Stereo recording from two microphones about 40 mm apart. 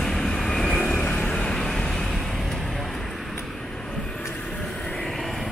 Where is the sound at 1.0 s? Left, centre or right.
Left.